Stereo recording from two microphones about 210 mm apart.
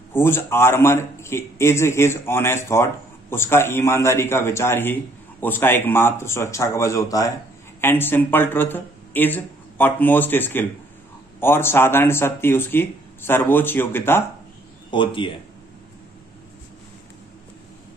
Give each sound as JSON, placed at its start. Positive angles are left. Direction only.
{"t": 0.1, "sound": "a man's voice", "side_deg": 10}
{"t": 14.9, "sound": "speech", "side_deg": 25}